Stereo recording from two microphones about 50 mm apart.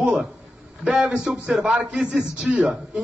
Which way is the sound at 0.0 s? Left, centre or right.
Right.